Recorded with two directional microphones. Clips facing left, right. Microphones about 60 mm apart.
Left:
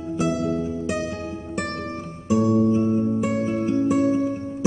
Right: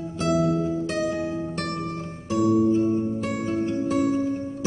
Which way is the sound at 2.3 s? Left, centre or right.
Centre.